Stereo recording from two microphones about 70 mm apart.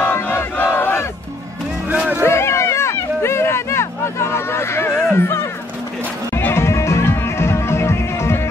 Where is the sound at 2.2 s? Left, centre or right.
Left.